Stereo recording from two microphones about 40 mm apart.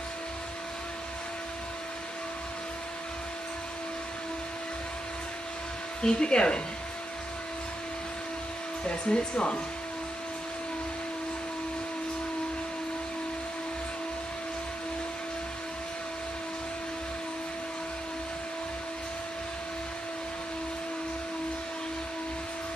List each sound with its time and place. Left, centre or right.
6.0 s speech: left
8.8 s speech: left